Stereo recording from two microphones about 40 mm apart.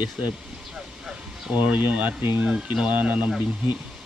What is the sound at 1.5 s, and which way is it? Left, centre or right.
Speech, right.